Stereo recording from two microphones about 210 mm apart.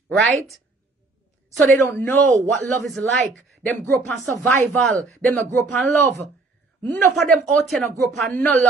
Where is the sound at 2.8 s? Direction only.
Centre (ahead or behind).